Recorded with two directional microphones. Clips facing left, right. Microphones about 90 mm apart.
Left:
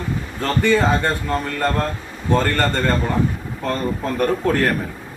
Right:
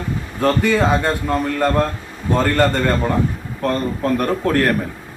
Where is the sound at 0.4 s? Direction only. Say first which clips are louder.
Right 2 dB; 10° right (ahead or behind).